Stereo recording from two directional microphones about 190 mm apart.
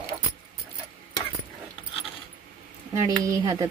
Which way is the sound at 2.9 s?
15° right (ahead or behind).